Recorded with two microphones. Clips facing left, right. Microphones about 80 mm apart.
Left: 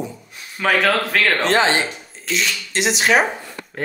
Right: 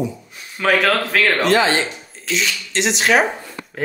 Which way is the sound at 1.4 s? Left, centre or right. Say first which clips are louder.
Right 1 dB; left.